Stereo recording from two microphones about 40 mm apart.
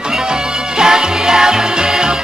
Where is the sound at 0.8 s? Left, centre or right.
Centre.